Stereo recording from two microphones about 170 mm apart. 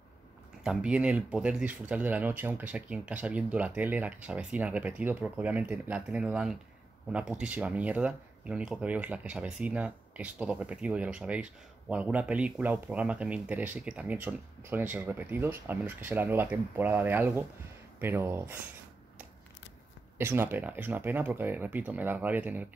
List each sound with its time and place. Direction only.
0.7 s speech: 5° right (ahead or behind)
20.2 s speech: 15° right (ahead or behind)